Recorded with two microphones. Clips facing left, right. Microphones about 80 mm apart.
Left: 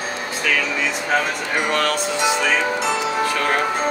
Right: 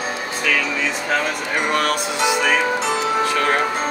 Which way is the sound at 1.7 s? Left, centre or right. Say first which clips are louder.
Right 1 dB; centre.